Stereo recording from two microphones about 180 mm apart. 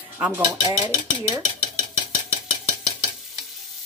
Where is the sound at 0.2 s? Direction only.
15° right (ahead or behind).